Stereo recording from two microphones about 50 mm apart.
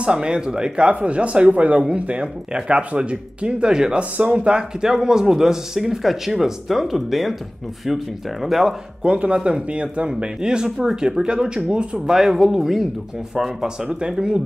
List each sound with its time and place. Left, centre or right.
0.0 s speech: centre
9.0 s speech: right
12.1 s speech: centre